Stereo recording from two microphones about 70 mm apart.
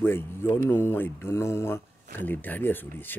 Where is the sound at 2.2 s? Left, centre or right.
Left.